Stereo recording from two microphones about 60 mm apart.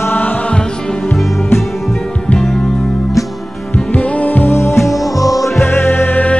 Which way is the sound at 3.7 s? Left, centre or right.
Left.